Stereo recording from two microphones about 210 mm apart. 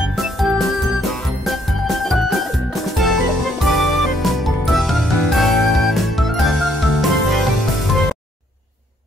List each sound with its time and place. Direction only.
0.1 s music: centre (ahead or behind)